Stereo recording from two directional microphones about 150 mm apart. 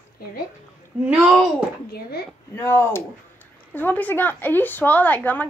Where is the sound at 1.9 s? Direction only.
90° left.